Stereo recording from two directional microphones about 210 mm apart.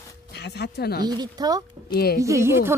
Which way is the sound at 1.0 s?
20° right (ahead or behind).